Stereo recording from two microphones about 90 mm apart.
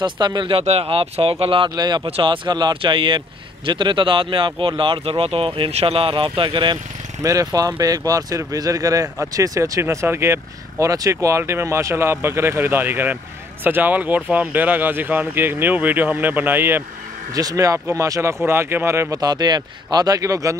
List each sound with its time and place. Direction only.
0.0 s speech: 60° right (ahead or behind); by 1.7 s 85° right
1.8 s speech: 50° right (ahead or behind)
2.0 s speech: 80° right; by 6.8 s 60° right (ahead or behind)
7.2 s speech: 40° right (ahead or behind)
17.3 s speech: 45° right (ahead or behind)
19.1 s speech: 45° right (ahead or behind)